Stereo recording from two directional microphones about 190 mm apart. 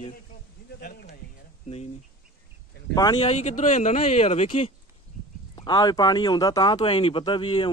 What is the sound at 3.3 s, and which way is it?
A man's voice, 35° left (ahead or behind).